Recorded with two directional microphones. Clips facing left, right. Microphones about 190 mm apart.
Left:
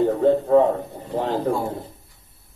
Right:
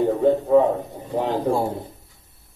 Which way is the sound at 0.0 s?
10° right (ahead or behind).